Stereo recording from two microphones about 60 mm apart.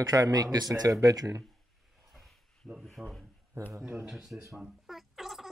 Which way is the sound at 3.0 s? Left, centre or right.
Centre.